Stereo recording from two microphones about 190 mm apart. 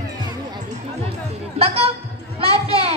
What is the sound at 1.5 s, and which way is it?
Music, 30° right (ahead or behind).